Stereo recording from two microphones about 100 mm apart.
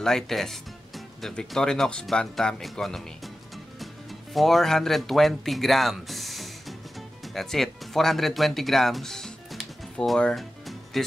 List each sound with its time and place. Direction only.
0.0 s speech: 5° left (ahead or behind)
7.0 s music: centre (ahead or behind)